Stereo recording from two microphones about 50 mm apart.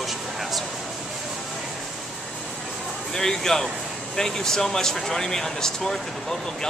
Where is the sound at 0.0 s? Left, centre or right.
Centre.